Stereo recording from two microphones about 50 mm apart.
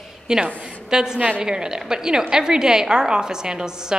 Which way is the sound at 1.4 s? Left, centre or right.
Centre.